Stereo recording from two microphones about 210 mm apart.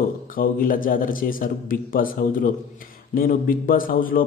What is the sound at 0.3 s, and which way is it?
A man's voice, 40° left (ahead or behind).